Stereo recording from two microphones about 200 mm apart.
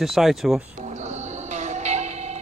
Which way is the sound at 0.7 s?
35° right (ahead or behind).